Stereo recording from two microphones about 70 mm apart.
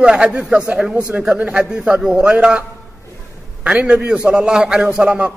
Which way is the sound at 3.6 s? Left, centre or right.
Centre.